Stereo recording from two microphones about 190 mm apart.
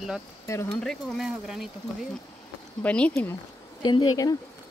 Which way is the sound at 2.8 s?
5° left (ahead or behind).